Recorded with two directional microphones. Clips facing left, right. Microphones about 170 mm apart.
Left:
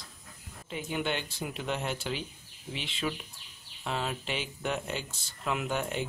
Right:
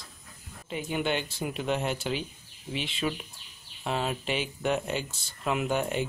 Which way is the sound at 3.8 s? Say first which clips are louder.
Right 4 dB; 20° right (ahead or behind).